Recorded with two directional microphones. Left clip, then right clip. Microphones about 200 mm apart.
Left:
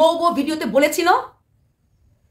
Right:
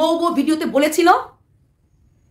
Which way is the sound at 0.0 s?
15° right (ahead or behind).